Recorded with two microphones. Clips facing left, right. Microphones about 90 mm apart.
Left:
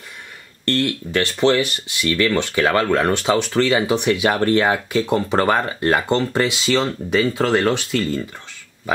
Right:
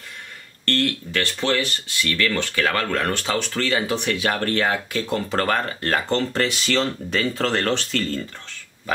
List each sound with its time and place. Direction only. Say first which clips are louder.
0.7 s speech: left 3 dB; 20° left (ahead or behind)